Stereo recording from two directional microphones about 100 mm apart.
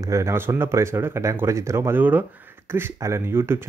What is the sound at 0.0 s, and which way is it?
Speech, 30° right (ahead or behind).